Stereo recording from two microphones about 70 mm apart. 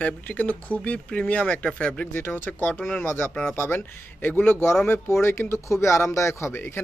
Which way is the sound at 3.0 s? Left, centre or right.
Left.